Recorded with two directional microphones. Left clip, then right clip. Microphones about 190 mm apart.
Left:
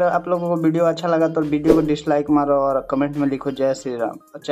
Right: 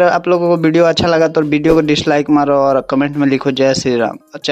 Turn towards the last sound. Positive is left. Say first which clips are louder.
# right 8 dB
turn(degrees=-35)  # may be behind; listen again after turning